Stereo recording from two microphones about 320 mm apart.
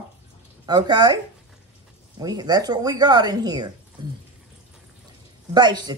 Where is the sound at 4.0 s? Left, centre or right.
Centre.